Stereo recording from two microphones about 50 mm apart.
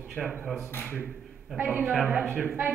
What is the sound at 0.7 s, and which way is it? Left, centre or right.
Speech, left.